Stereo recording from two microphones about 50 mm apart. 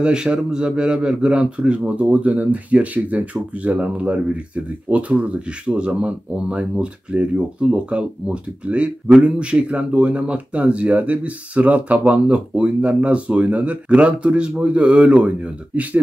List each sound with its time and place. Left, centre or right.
0.0 s speech: centre